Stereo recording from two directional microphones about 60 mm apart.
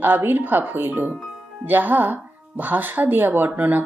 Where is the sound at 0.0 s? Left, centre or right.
Right.